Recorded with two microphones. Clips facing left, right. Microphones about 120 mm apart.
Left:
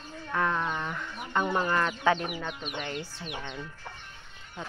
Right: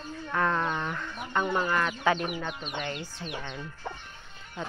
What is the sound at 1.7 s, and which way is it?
Speech, 25° left (ahead or behind).